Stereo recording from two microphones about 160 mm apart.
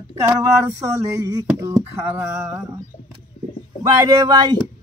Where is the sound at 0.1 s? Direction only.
20° right (ahead or behind).